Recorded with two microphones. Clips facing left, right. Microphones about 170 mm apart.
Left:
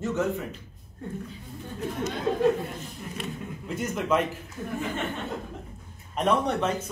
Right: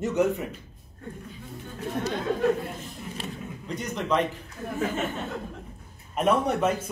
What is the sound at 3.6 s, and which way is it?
Speech, 5° left (ahead or behind).